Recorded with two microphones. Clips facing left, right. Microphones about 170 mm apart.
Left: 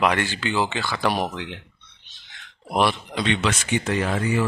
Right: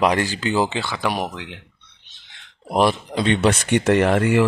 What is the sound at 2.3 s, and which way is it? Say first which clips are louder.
Speech: right 3 dB; 35° right (ahead or behind).